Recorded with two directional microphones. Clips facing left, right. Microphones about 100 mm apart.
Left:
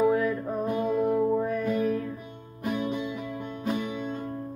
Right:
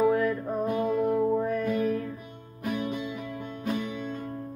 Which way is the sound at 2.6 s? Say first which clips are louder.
Left 1 dB; 25° left (ahead or behind).